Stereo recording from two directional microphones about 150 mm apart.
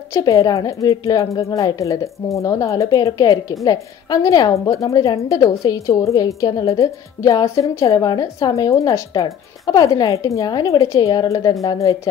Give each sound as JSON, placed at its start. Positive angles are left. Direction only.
{"t": 0.1, "sound": "a woman's voice", "side_deg": 25}